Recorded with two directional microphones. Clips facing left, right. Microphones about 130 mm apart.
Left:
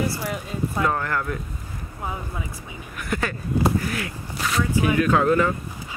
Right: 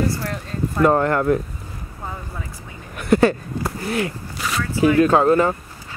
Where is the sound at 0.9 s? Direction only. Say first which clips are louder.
Right 9 dB; 35° right (ahead or behind).